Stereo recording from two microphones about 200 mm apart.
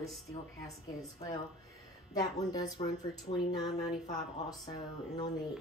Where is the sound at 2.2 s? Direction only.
20° left (ahead or behind).